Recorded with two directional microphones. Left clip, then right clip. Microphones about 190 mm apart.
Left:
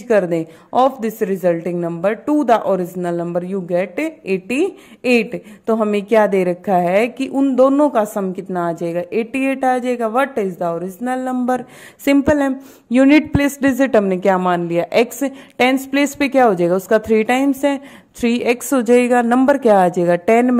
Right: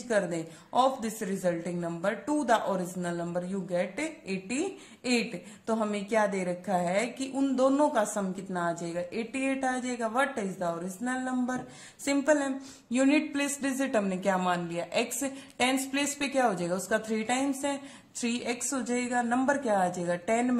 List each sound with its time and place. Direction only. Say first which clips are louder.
0.1 s a woman's voice: left 13 dB; 45° left (ahead or behind)